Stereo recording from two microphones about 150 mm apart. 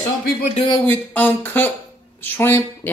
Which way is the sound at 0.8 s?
15° left (ahead or behind).